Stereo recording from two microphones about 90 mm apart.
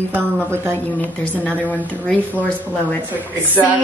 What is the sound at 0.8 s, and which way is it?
A woman's voice, 20° left (ahead or behind).